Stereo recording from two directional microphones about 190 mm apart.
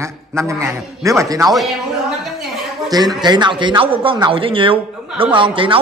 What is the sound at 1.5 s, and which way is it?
Speech, centre (ahead or behind).